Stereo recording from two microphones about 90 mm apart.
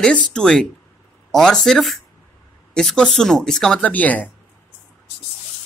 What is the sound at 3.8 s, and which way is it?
Speech, 15° left (ahead or behind).